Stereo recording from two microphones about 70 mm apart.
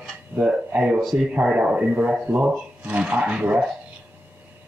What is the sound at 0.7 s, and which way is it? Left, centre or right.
Speech, centre.